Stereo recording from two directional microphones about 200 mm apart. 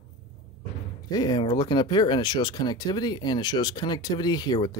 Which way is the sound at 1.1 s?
20° left (ahead or behind).